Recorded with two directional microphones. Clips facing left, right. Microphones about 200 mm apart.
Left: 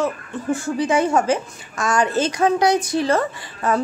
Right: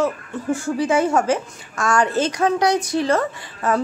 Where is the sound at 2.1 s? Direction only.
Centre (ahead or behind).